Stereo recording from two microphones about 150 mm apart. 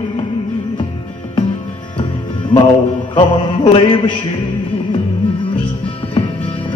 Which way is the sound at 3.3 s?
30° left (ahead or behind).